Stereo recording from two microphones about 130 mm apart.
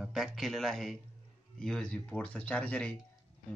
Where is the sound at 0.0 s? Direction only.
Centre (ahead or behind).